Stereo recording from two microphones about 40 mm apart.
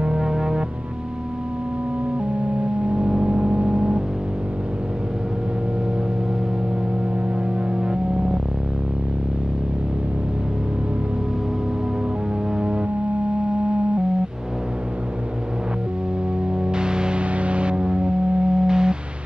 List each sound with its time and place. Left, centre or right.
0.0 s music: centre
2.9 s a sound: centre
7.8 s music: centre
12.5 s music: centre
16.5 s music: right